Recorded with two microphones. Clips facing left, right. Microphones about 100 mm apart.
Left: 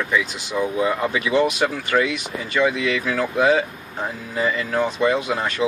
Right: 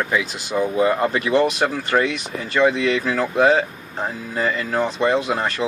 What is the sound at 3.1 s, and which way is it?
Speech, 50° right (ahead or behind).